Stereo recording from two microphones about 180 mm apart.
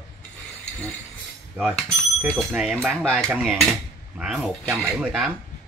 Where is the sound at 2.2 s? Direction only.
5° right (ahead or behind).